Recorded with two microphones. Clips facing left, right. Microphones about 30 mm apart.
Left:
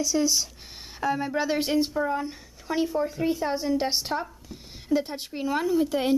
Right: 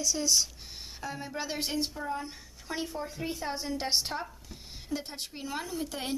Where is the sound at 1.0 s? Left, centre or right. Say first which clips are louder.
Left 11 dB; centre.